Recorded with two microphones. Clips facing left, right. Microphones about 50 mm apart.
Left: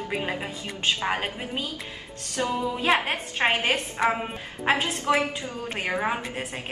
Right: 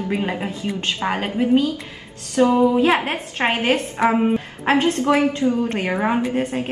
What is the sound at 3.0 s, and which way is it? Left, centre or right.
A woman's voice, centre.